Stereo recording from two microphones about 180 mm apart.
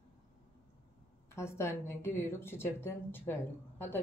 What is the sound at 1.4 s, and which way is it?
Speech, 15° left (ahead or behind).